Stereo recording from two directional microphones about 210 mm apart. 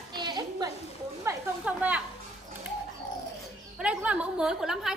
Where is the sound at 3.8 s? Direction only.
5° right (ahead or behind).